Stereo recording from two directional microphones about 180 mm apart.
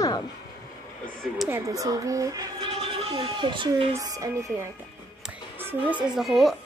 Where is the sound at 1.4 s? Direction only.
15° right (ahead or behind).